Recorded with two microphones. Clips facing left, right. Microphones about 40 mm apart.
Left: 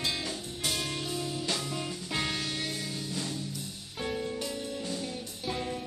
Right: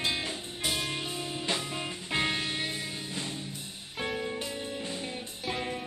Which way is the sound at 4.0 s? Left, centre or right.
Right.